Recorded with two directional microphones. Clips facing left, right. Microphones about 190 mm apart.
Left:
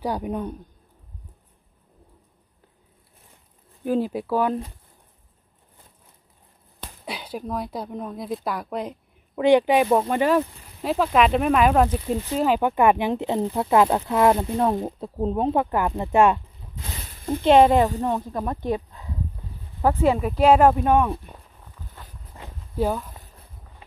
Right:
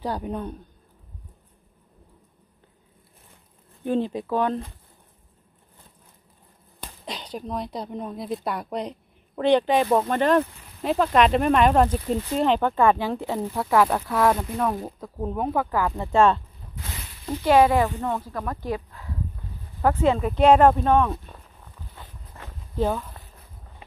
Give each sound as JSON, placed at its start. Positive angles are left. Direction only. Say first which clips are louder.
{"t": 0.0, "sound": "a woman's voice", "louder": "left 2 dB", "side_deg": 10}
{"t": 3.8, "sound": "a woman's voice", "louder": "left 1 dB", "side_deg": 5}
{"t": 7.1, "sound": "a woman's voice", "louder": "left 2 dB", "side_deg": 10}
{"t": 17.1, "sound": "a sound", "louder": "left 4 dB", "side_deg": 50}
{"t": 17.4, "sound": "a woman's voice", "louder": "left 2 dB", "side_deg": 25}
{"t": 22.3, "sound": "a sound", "louder": "left 1 dB", "side_deg": 15}